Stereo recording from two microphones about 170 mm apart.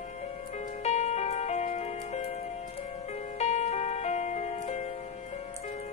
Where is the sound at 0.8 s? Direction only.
40° left (ahead or behind).